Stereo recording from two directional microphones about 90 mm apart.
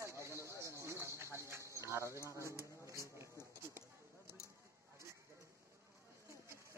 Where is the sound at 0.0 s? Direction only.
30° right (ahead or behind).